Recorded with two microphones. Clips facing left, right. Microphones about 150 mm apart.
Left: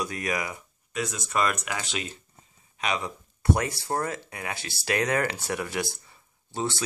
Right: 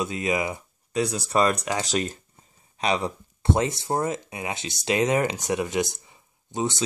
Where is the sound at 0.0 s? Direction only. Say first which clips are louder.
Right 4 dB; 20° right (ahead or behind).